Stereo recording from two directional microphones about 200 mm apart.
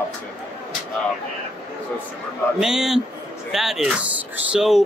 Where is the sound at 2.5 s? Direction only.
5° right (ahead or behind).